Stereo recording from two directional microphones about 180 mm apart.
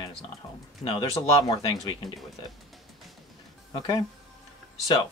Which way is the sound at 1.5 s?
25° left (ahead or behind).